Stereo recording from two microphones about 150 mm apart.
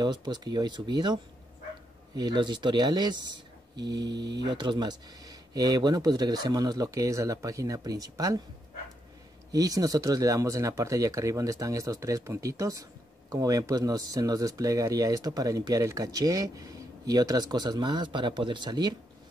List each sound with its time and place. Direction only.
0.0 s speech: 30° right (ahead or behind)
9.5 s speech: 25° right (ahead or behind)